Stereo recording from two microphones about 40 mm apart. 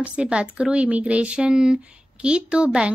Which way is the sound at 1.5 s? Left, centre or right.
Centre.